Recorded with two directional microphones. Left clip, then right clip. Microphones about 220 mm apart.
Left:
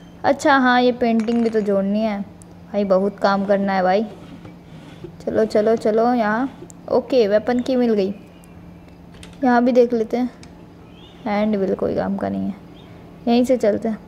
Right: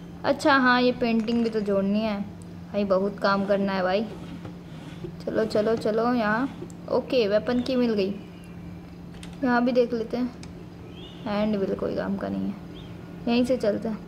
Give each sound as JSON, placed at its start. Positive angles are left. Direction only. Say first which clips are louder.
{"t": 0.2, "sound": "speech", "louder": "left 5 dB", "side_deg": 25}
{"t": 5.2, "sound": "speech", "louder": "left 7 dB", "side_deg": 25}
{"t": 9.4, "sound": "speech", "louder": "left 7 dB", "side_deg": 30}